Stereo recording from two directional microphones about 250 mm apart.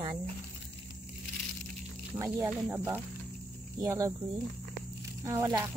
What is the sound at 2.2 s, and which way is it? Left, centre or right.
Speech, centre.